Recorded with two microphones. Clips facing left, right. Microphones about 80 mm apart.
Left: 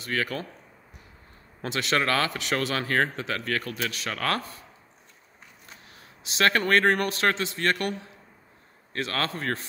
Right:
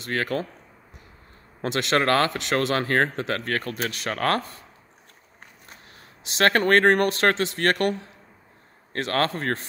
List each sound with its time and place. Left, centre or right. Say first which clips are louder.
0.1 s speech: right 3 dB; right
1.9 s speech: right 4 dB; right
6.3 s speech: right 3 dB; right
8.9 s speech: right 5 dB; right